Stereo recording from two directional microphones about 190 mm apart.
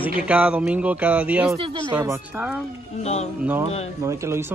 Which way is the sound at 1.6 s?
25° right (ahead or behind).